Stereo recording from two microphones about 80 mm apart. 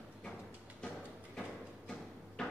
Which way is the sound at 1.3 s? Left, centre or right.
Centre.